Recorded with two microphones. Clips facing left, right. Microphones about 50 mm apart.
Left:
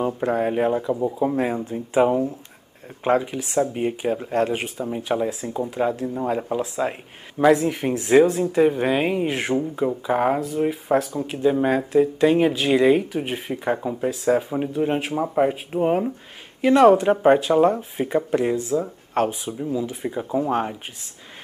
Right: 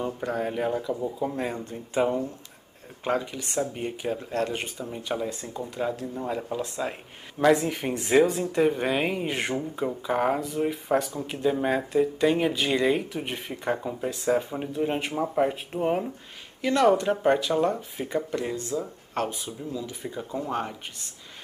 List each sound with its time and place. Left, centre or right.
0.0 s speech: left
1.3 s speech: centre
3.0 s speech: left
7.5 s speech: centre
16.6 s speech: left